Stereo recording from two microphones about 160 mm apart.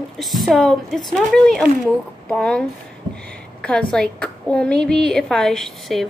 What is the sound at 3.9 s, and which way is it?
A woman's voice, 5° left (ahead or behind).